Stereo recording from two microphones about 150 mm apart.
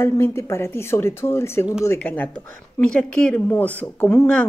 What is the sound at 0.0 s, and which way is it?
Speech, 15° left (ahead or behind).